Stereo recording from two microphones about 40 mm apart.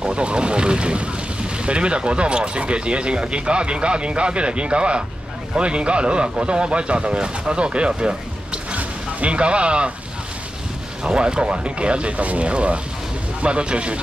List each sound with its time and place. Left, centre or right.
0.0 s speech: right
8.7 s a sound: right
11.1 s speech: right